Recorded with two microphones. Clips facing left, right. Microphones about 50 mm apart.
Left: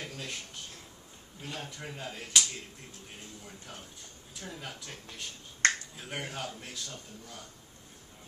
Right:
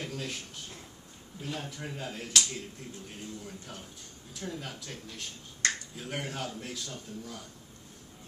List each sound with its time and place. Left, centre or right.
0.0 s a sound: centre
1.4 s speech: centre
5.6 s finger snapping: left
5.9 s speech: centre